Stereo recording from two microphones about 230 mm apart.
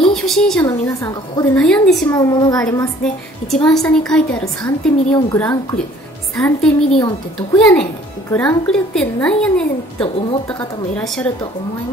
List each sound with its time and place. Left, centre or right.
0.1 s a woman's voice: centre
0.7 s a woman's voice: centre
2.0 s a woman's voice: centre
3.0 s a woman's voice: centre